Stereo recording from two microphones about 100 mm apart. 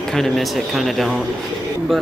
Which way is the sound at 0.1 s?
Centre (ahead or behind).